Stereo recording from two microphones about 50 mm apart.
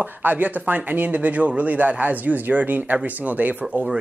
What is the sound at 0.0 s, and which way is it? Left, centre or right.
Speech, right.